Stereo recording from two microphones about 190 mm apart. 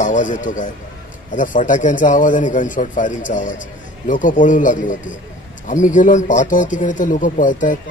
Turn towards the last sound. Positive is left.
turn(degrees=45)  # may be behind; listen again after turning